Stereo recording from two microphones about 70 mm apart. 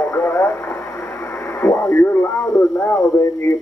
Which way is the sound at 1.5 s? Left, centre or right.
Left.